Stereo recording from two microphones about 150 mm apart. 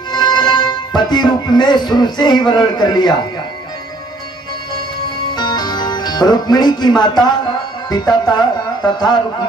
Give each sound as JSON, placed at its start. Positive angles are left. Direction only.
{"t": 0.1, "sound": "music", "side_deg": 30}
{"t": 5.3, "sound": "speech", "side_deg": 30}